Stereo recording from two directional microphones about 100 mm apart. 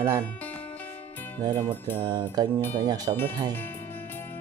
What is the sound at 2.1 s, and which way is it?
Speech, 45° right (ahead or behind).